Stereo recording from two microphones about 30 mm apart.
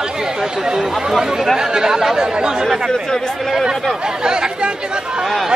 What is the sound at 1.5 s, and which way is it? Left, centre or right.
Speech, centre.